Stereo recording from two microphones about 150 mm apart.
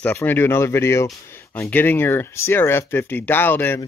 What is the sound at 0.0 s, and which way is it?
Speech, 10° left (ahead or behind).